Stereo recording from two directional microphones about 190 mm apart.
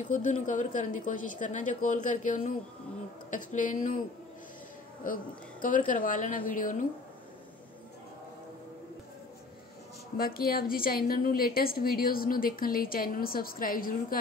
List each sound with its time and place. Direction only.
0.0 s a woman's voice: 40° left (ahead or behind)
5.0 s a woman's voice: 45° left (ahead or behind)
10.1 s a woman's voice: 55° left (ahead or behind)